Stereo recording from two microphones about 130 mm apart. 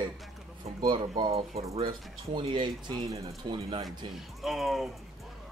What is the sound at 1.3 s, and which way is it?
Speech, 50° right (ahead or behind).